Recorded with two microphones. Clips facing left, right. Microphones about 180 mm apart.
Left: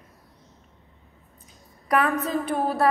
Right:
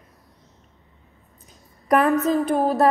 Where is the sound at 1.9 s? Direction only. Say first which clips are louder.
Right 5 dB; 40° right (ahead or behind).